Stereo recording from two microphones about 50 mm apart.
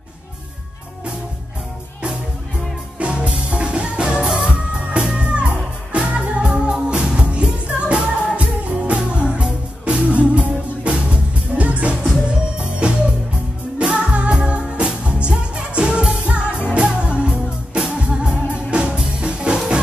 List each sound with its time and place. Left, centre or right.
3.0 s music: right